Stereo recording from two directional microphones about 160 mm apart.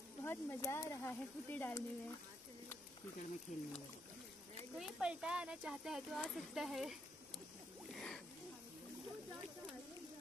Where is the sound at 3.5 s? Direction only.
45° left (ahead or behind).